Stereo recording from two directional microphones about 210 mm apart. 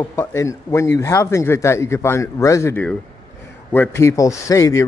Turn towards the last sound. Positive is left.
turn(degrees=15)  # may be behind; listen again after turning